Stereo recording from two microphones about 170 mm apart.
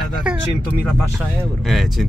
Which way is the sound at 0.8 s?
Centre (ahead or behind).